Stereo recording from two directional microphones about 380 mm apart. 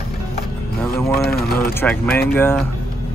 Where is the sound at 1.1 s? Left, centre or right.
Left.